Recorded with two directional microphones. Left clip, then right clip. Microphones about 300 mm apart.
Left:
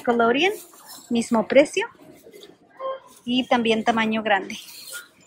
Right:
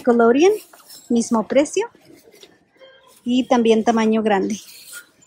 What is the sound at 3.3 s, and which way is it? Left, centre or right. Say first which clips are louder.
Speech: right 5 dB; centre.